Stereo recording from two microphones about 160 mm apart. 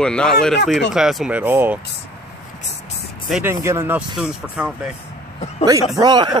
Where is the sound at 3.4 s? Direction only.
15° right (ahead or behind).